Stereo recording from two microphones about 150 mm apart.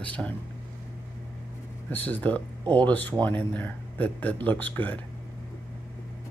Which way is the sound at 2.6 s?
35° right (ahead or behind).